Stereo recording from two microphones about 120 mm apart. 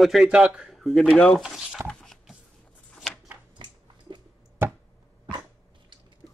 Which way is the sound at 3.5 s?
40° right (ahead or behind).